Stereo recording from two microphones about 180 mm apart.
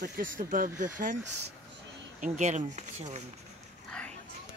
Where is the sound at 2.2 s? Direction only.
40° right (ahead or behind).